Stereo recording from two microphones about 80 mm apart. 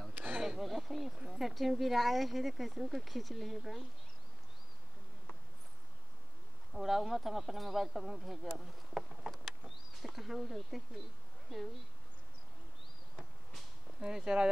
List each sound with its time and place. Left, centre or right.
0.1 s a sound: centre
0.4 s a sound: centre
1.2 s speech: centre
6.7 s speech: centre
9.3 s vehicle: centre
10.0 s speech: centre
14.0 s speech: centre